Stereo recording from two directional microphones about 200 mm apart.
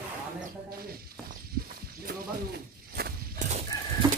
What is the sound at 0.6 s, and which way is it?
Speech, 50° right (ahead or behind).